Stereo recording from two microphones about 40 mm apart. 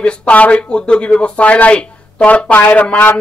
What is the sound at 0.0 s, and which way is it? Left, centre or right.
Speech, left.